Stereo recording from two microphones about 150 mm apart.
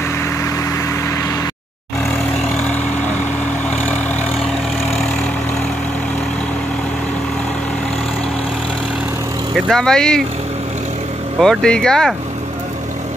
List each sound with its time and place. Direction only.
9.7 s speech: 5° left (ahead or behind)
11.3 s speech: centre (ahead or behind)